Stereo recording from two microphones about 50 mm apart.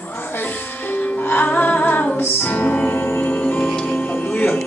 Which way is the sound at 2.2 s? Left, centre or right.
Left.